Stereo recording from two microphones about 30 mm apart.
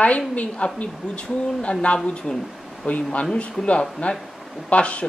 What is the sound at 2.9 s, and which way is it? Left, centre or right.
Speech, left.